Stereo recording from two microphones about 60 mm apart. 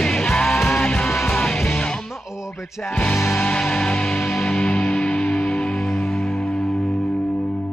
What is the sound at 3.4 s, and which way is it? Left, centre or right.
Music, centre.